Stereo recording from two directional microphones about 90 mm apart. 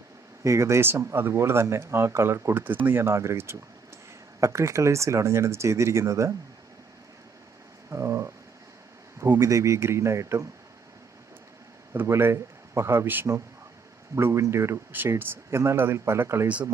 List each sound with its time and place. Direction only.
0.4 s speech: 35° right (ahead or behind)
7.9 s speech: 30° right (ahead or behind)
11.9 s speech: 25° right (ahead or behind)